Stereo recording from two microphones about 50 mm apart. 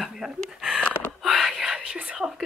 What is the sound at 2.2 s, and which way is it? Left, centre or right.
Speech, centre.